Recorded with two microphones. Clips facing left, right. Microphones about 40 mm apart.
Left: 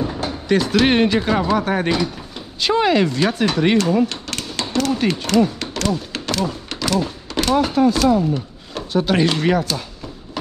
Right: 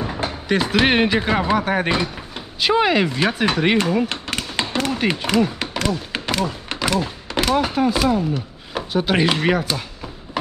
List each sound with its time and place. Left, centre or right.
0.0 s speech: right